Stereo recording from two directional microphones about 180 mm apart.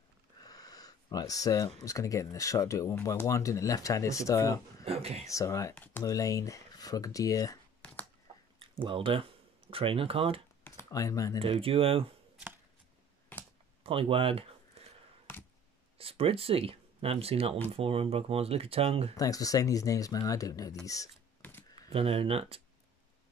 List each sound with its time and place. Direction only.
0.4 s a sound: 20° left (ahead or behind)
1.8 s speech: 20° left (ahead or behind)
4.8 s speech: 35° right (ahead or behind)
5.3 s speech: 15° left (ahead or behind)
7.8 s typing: 10° left (ahead or behind)
8.5 s speech: 30° right (ahead or behind)
10.6 s computer keyboard: 15° left (ahead or behind)
11.3 s speech: 30° right (ahead or behind)
13.8 s speech: 30° right (ahead or behind)
16.0 s speech: 30° right (ahead or behind)
19.1 s speech: 20° left (ahead or behind)
20.8 s a sound: 20° left (ahead or behind)
21.9 s speech: 35° right (ahead or behind)